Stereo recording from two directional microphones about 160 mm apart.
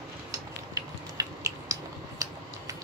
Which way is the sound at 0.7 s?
20° right (ahead or behind).